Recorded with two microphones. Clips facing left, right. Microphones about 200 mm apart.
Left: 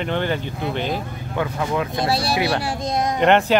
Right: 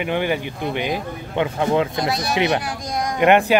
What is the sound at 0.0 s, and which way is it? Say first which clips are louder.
Speech: right 1 dB; 10° right (ahead or behind).